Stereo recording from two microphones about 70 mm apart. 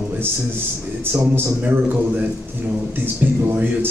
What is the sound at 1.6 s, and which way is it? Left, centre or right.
Speech, right.